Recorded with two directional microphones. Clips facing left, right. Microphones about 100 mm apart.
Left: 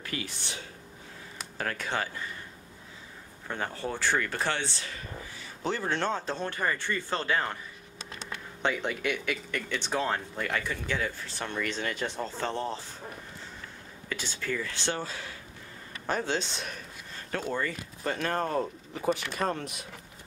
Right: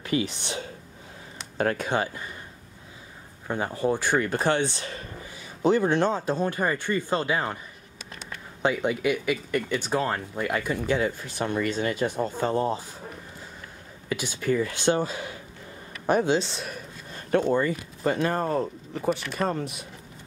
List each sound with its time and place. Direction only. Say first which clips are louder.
0.0 s speech: right 10 dB; 20° right (ahead or behind)
1.6 s speech: right 7 dB; 20° right (ahead or behind)
3.4 s speech: right 8 dB; 15° right (ahead or behind)
8.6 s speech: right 6 dB; 5° right (ahead or behind)
14.0 s speech: right 8 dB; 10° right (ahead or behind)
16.3 s speech: right 5 dB; centre (ahead or behind)
17.3 s speech: right 9 dB; 20° right (ahead or behind); by 19.9 s centre (ahead or behind)